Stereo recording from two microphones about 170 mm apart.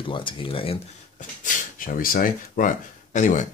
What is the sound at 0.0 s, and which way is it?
Speech, 30° left (ahead or behind).